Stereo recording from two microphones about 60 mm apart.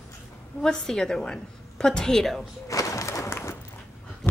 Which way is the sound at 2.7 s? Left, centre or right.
Left.